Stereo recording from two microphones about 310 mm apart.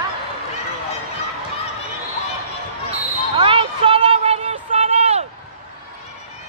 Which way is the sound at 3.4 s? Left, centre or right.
Centre.